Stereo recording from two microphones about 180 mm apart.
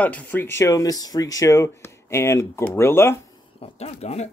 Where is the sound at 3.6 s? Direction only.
35° left (ahead or behind).